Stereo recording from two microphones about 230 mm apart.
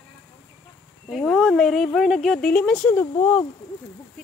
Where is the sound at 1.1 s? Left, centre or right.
Centre.